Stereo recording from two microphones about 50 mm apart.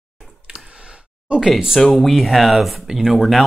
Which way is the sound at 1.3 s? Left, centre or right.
Centre.